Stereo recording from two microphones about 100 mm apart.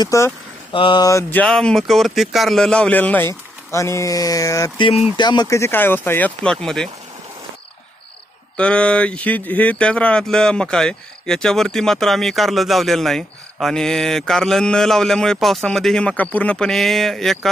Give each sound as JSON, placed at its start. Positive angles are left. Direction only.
{"t": 0.0, "sound": "speech", "side_deg": 30}
{"t": 0.7, "sound": "speech", "side_deg": 55}
{"t": 1.3, "sound": "speech", "side_deg": 10}
{"t": 5.1, "sound": "speech", "side_deg": 45}
{"t": 5.5, "sound": "speech", "side_deg": 25}
{"t": 8.5, "sound": "speech", "side_deg": 10}